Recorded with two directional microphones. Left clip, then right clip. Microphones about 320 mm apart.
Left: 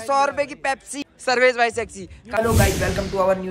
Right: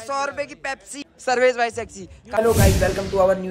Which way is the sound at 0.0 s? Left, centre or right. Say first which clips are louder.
Left 5 dB; centre.